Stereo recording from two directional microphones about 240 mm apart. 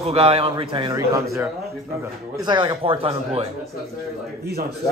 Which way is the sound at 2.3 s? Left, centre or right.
Centre.